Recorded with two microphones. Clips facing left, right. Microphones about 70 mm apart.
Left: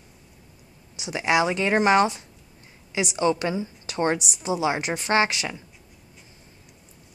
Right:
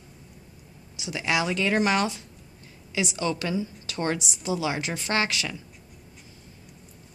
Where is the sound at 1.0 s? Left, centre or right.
Left.